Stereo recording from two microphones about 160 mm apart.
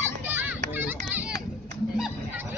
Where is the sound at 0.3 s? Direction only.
15° right (ahead or behind).